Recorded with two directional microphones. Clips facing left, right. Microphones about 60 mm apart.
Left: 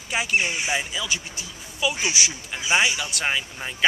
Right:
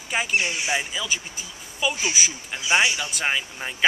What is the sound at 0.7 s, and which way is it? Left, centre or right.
Speech, centre.